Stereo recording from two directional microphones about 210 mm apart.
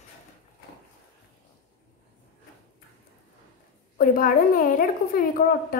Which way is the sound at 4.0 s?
40° left (ahead or behind).